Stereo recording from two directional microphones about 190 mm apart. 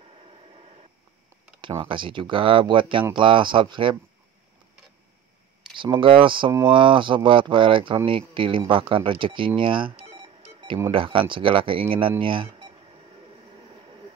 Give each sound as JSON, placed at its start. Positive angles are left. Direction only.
{"t": 1.8, "sound": "speech", "side_deg": -25}
{"t": 5.8, "sound": "speech", "side_deg": -25}
{"t": 9.6, "sound": "cash register", "side_deg": -25}
{"t": 10.9, "sound": "speech", "side_deg": -25}